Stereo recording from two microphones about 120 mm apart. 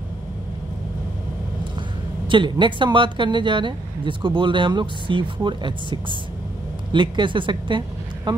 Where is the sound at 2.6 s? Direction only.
45° right (ahead or behind).